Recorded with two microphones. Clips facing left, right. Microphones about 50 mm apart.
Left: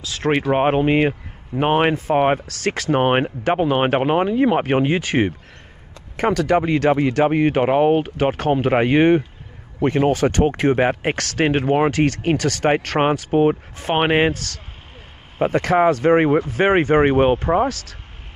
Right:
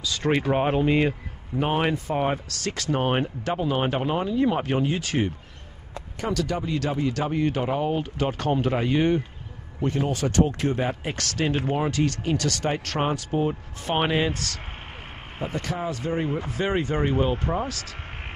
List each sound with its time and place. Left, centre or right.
0.3 s speech: left
8.7 s speech: left
12.4 s speech: left
15.3 s speech: left
16.5 s speech: left